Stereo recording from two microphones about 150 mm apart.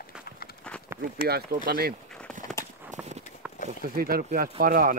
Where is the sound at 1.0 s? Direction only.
65° right (ahead or behind).